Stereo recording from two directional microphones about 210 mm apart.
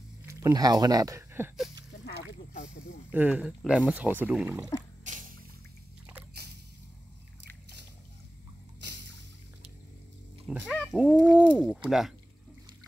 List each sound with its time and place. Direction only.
0.2 s speech: 15° right (ahead or behind)
2.0 s a sound: 35° left (ahead or behind)
3.1 s speech: 5° right (ahead or behind)
10.5 s speech: centre (ahead or behind)